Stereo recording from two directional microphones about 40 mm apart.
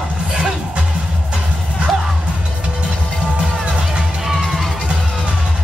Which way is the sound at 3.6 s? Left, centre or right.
Right.